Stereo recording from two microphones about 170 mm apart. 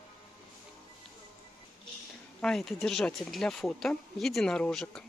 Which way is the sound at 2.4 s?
Centre (ahead or behind).